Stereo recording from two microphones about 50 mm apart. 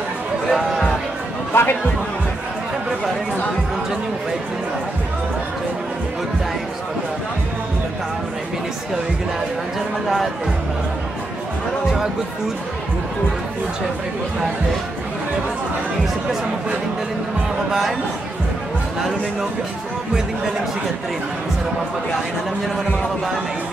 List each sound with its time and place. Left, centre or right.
0.5 s speech: centre
1.5 s speech: left
10.0 s speech: centre
17.6 s speech: centre